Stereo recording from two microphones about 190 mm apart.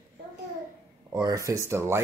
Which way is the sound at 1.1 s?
20° right (ahead or behind).